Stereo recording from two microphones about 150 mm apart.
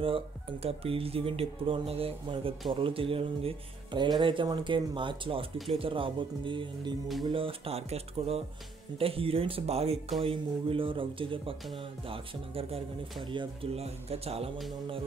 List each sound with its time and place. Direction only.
0.0 s speech: 40° right (ahead or behind)